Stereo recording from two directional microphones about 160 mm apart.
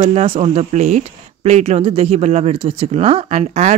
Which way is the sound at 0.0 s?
40° right (ahead or behind).